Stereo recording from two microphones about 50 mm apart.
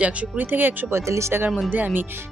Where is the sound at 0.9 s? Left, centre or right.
Right.